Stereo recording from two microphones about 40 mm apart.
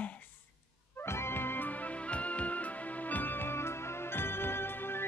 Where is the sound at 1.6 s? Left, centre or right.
Left.